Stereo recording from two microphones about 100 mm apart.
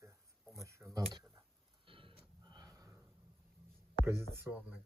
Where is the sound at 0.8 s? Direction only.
5° right (ahead or behind).